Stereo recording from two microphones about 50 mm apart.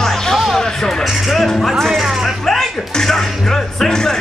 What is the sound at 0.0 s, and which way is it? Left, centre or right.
Music, centre.